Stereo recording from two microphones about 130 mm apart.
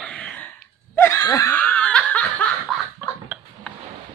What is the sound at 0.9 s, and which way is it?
Snicker, 20° left (ahead or behind).